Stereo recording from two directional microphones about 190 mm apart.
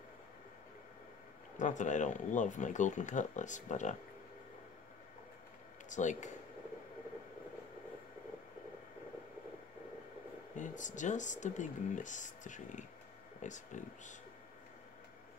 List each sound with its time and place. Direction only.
1.6 s speech: 40° left (ahead or behind)
5.9 s speech: 40° left (ahead or behind)
10.5 s speech: 40° left (ahead or behind)